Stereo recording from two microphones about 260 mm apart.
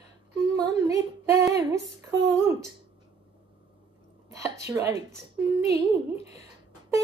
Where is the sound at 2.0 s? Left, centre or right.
Centre.